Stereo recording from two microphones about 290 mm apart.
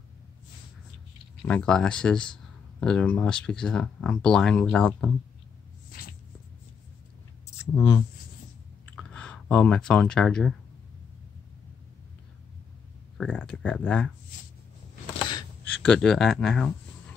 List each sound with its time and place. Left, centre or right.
1.5 s speech: centre
7.5 s speech: centre
13.2 s speech: centre
15.1 s a sound: centre
15.8 s speech: centre